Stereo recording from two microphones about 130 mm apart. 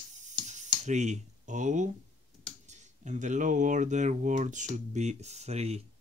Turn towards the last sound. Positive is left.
turn(degrees=-55)  # may be behind; listen again after turning